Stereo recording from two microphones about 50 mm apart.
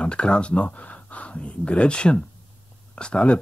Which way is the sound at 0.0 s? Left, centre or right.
Centre.